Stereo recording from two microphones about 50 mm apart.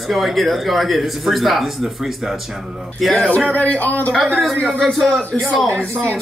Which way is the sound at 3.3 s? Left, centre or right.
Left.